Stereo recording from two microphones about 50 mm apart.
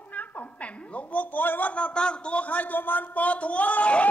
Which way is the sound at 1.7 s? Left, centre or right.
Left.